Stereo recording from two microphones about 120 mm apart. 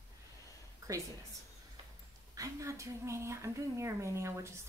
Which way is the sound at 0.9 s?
25° right (ahead or behind).